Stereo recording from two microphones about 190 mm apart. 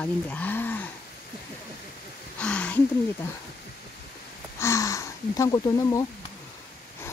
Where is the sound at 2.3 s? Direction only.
5° left (ahead or behind).